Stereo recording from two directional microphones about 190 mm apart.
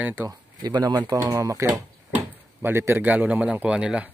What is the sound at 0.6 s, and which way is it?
Speech, 20° right (ahead or behind).